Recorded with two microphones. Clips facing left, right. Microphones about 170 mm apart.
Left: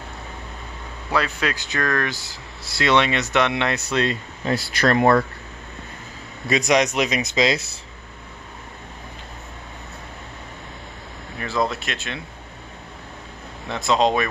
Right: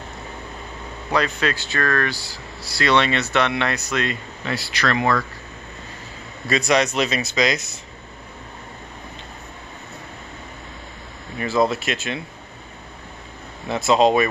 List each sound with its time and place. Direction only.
1.1 s speech: 10° left (ahead or behind); by 4.6 s 30° left (ahead or behind)
4.7 s speech: 50° left (ahead or behind)
6.4 s speech: 20° left (ahead or behind)
11.3 s speech: centre (ahead or behind)
13.7 s speech: 5° right (ahead or behind)